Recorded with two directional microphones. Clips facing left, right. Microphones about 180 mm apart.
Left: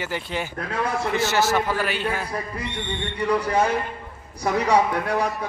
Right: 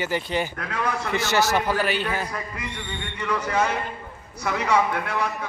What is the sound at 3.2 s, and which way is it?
A man's voice, 35° left (ahead or behind).